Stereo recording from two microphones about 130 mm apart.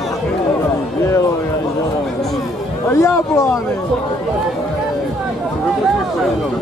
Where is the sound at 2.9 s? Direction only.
20° left (ahead or behind).